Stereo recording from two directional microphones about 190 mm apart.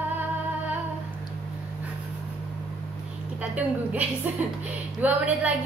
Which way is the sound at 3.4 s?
5° right (ahead or behind).